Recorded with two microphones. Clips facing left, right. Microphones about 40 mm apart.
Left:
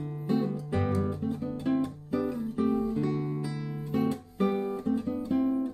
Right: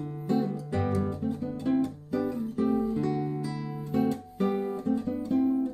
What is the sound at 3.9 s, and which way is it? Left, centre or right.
Music, centre.